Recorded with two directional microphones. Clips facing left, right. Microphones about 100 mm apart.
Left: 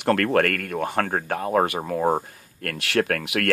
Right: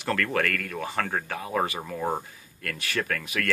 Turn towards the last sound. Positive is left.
turn(degrees=70)  # may be behind; listen again after turning